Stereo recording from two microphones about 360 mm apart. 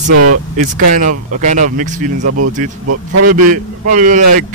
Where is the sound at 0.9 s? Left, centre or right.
Right.